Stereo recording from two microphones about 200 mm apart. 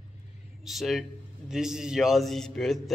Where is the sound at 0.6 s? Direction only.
Centre (ahead or behind).